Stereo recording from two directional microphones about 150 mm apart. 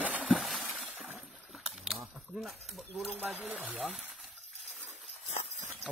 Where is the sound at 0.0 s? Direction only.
5° right (ahead or behind).